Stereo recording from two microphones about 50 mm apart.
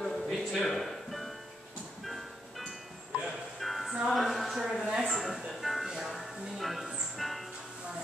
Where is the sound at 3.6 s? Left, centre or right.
Centre.